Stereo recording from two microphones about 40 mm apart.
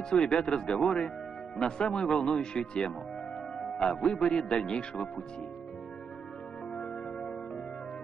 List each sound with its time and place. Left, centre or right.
0.1 s speech: left
3.5 s music: centre
4.0 s speech: left
6.7 s music: left